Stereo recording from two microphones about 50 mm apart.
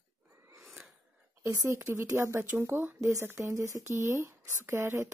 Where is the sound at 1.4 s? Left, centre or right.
Right.